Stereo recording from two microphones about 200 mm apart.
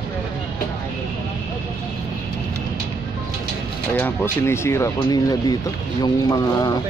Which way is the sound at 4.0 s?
15° left (ahead or behind).